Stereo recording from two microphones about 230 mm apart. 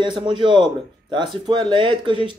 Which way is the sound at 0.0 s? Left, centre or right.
Centre.